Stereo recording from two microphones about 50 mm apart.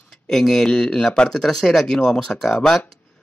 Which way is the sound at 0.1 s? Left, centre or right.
Centre.